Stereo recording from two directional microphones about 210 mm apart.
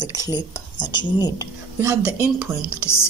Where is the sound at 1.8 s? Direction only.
10° right (ahead or behind).